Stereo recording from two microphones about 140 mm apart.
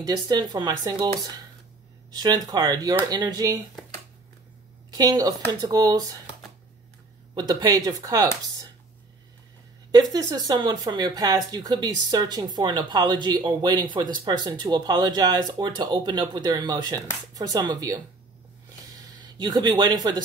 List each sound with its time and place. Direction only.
0.0 s speech: 30° right (ahead or behind)
4.9 s speech: 30° right (ahead or behind)
7.3 s speech: 25° right (ahead or behind)
10.1 s speech: 30° right (ahead or behind)
18.9 s a sound: 25° right (ahead or behind)